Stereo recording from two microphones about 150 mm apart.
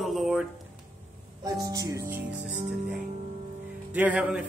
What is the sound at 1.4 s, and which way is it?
Speech, 25° right (ahead or behind).